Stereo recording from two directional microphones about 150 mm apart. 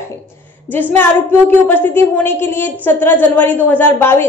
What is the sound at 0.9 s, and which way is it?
A woman's voice, 15° left (ahead or behind).